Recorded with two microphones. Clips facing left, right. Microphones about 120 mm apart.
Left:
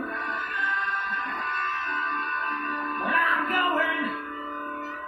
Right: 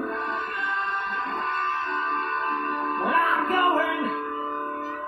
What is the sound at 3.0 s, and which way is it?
Music, 25° right (ahead or behind).